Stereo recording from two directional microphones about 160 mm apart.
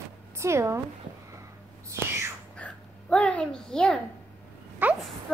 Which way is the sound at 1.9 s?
15° right (ahead or behind).